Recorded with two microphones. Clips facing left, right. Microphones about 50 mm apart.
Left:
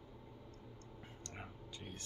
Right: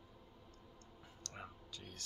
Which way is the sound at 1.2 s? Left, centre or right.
Left.